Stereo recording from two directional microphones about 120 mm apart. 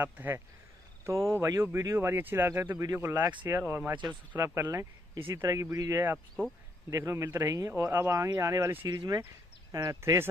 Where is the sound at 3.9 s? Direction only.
40° right (ahead or behind).